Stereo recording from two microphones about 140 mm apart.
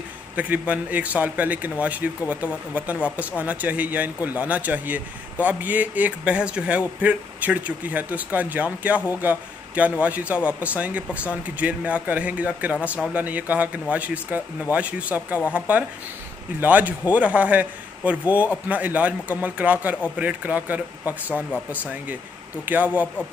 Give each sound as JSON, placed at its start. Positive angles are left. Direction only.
{"t": 0.4, "sound": "speech", "side_deg": -10}
{"t": 15.3, "sound": "speech", "side_deg": 20}
{"t": 16.5, "sound": "speech", "side_deg": -10}
{"t": 22.7, "sound": "speech", "side_deg": -10}